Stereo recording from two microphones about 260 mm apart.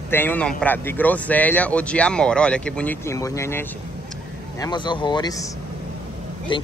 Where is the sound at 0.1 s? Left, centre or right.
Centre.